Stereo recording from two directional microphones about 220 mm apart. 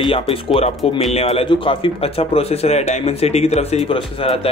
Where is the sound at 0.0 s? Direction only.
25° left (ahead or behind).